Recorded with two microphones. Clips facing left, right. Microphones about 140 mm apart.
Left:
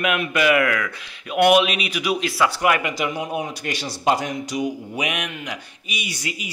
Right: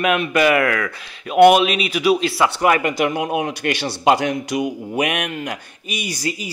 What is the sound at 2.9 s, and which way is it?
A man's voice, 60° right (ahead or behind).